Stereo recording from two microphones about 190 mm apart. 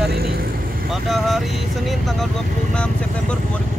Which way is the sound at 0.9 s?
Centre (ahead or behind).